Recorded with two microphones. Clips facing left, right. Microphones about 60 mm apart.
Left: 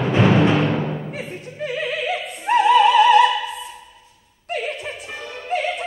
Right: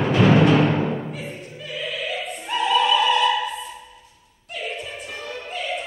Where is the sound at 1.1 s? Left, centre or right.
Left.